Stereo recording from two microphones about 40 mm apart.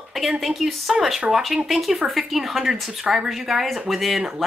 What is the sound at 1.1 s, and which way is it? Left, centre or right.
Speech, centre.